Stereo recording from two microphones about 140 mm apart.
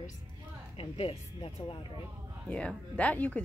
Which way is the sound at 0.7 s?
40° left (ahead or behind).